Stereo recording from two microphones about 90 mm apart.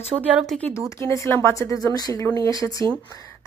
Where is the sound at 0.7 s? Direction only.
35° left (ahead or behind).